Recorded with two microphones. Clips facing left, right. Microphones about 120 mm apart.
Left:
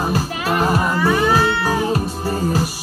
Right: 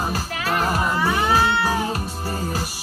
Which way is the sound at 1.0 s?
20° right (ahead or behind).